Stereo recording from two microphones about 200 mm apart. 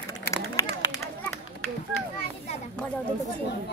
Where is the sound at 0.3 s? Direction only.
15° left (ahead or behind).